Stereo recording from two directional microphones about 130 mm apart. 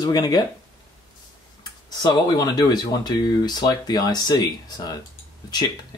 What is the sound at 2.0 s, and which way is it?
Speech, 30° left (ahead or behind).